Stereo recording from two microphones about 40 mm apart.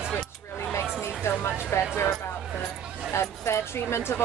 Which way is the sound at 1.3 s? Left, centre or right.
Left.